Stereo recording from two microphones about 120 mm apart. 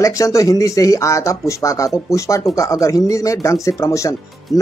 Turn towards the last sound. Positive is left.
turn(degrees=25)  # may be behind; listen again after turning